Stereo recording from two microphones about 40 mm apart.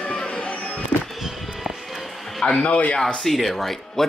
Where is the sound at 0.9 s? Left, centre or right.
Right.